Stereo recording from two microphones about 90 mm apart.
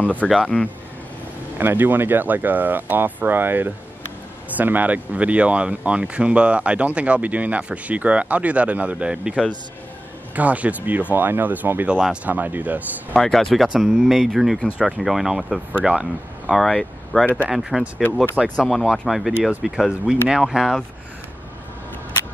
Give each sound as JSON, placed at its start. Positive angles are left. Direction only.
{"t": 0.2, "sound": "speech", "side_deg": -10}
{"t": 1.6, "sound": "speech", "side_deg": -20}
{"t": 13.1, "sound": "speech", "side_deg": 5}
{"t": 13.7, "sound": "speech", "side_deg": -10}
{"t": 18.7, "sound": "speech", "side_deg": 0}